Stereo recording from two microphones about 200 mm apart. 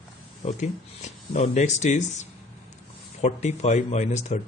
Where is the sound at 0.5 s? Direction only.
35° left (ahead or behind).